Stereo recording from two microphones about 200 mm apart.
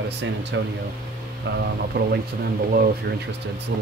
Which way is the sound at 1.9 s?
55° right (ahead or behind).